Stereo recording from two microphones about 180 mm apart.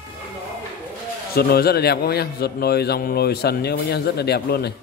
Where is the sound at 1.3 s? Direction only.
60° left (ahead or behind).